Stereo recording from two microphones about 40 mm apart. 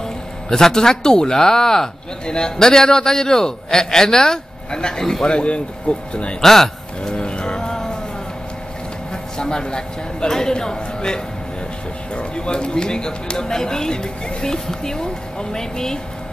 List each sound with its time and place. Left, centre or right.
0.5 s speech: centre
6.4 s speech: centre
7.0 s music: left
9.1 s a man's voice: centre